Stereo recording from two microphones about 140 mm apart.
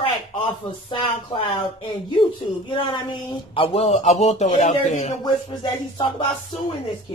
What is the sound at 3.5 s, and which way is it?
Speech, 45° left (ahead or behind).